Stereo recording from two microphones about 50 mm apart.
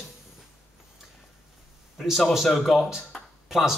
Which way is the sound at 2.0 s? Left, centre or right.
Centre.